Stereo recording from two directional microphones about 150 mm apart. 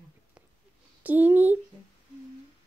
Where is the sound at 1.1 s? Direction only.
10° right (ahead or behind).